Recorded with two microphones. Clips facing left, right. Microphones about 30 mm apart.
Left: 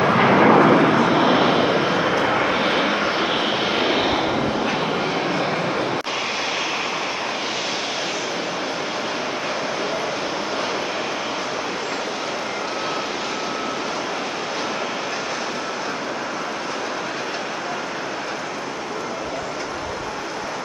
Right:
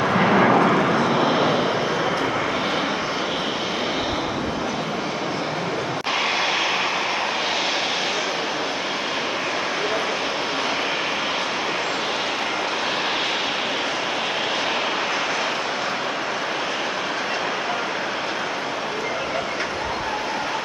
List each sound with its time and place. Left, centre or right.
0.0 s vehicle: centre